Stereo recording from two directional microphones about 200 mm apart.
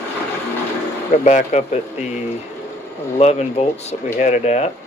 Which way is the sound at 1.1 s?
35° left (ahead or behind).